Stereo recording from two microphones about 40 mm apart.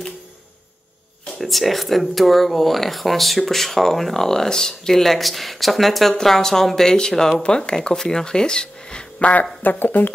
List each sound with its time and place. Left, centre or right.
1.4 s speech: centre
7.4 s speech: left
9.2 s speech: left